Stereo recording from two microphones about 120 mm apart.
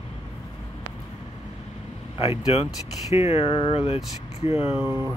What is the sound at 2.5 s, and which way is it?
Speech, 60° left (ahead or behind).